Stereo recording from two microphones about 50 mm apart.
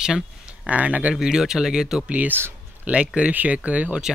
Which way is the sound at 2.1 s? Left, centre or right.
Right.